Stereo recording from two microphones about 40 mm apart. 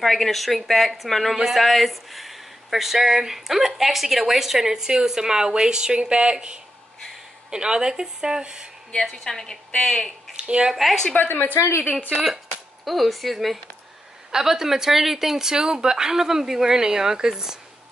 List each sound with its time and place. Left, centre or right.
0.0 s a woman's voice: centre
9.1 s a woman's voice: centre
10.3 s speech: right
10.7 s speech: centre
11.1 s a woman's voice: left
12.8 s speech: centre
14.3 s speech: centre